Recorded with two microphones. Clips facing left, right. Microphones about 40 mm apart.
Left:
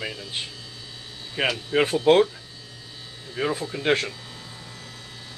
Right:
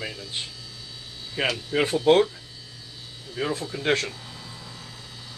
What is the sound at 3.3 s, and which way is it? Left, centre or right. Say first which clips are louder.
Speech: left 2 dB; left.